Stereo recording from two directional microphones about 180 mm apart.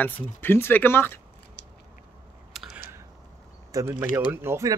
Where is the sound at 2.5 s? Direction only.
Centre (ahead or behind).